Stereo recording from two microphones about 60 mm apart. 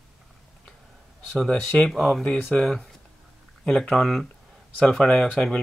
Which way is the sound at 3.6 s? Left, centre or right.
Centre.